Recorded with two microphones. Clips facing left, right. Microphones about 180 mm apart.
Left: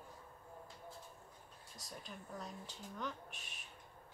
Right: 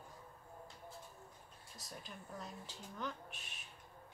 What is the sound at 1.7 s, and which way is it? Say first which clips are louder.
Speech: left 1 dB; centre (ahead or behind).